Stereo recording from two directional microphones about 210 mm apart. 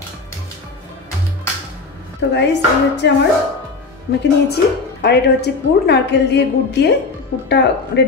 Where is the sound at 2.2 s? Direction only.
55° left (ahead or behind).